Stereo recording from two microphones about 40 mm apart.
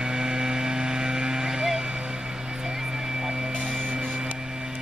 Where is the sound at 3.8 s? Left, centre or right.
Right.